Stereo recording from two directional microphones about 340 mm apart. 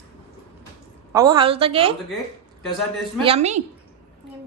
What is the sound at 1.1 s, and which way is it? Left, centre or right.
Speech, centre.